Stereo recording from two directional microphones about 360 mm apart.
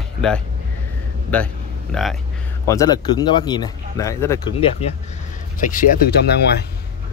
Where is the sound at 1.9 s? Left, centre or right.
Centre; by 6.6 s left.